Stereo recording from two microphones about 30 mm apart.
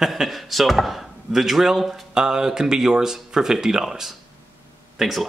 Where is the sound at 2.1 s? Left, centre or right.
Right.